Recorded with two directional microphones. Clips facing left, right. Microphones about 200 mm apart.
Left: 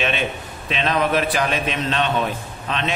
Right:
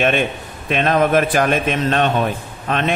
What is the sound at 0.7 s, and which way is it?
A man's voice, 50° right (ahead or behind).